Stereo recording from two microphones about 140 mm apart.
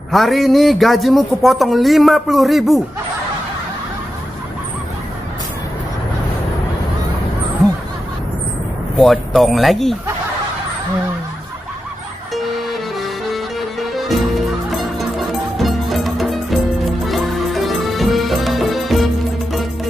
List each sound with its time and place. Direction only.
0.1 s a man's voice: centre (ahead or behind)
8.9 s a man's voice: centre (ahead or behind)
12.4 s music: centre (ahead or behind)